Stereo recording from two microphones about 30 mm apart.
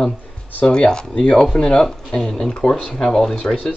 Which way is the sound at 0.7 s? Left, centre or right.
Left.